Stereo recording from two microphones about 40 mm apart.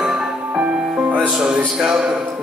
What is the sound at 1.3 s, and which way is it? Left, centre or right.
Speech, right.